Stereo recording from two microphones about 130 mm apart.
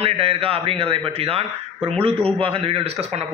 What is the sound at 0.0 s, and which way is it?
A man's voice, 50° right (ahead or behind).